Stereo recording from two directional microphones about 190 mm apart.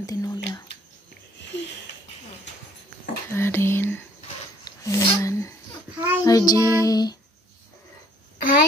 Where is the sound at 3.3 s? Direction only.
10° left (ahead or behind).